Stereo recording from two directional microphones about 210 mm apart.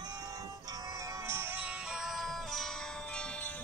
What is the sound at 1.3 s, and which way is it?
Music, 10° right (ahead or behind).